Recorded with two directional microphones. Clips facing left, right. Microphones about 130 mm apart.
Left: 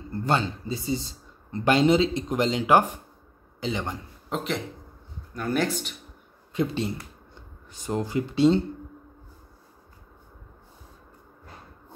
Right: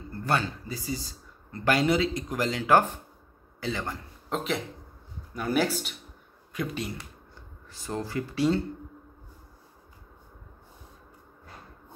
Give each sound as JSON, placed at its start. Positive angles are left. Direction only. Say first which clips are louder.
{"t": 0.1, "sound": "speech", "louder": "left 3 dB", "side_deg": 25}
{"t": 4.3, "sound": "speech", "louder": "left 1 dB", "side_deg": 0}
{"t": 6.5, "sound": "speech", "louder": "left 6 dB", "side_deg": 25}